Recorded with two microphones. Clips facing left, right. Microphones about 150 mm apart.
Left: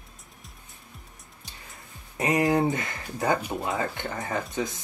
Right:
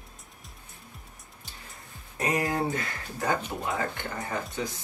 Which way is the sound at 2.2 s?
20° left (ahead or behind).